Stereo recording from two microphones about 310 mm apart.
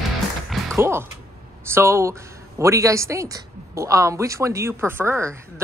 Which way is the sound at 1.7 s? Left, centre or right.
Centre.